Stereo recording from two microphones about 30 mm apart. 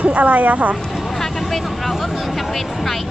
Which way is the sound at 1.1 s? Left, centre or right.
Centre.